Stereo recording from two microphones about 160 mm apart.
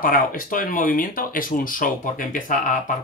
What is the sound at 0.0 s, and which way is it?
Speech, 60° left (ahead or behind).